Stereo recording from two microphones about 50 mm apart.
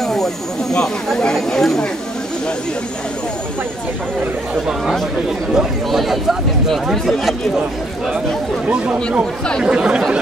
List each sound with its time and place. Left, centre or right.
0.0 s snake: centre
0.7 s speech: centre
5.9 s speech: centre
8.6 s speech: right